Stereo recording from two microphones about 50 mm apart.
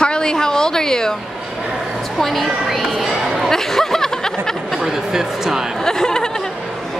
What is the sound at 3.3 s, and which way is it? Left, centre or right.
Chatter, centre.